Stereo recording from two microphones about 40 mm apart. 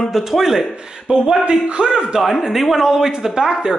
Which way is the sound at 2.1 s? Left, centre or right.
Centre.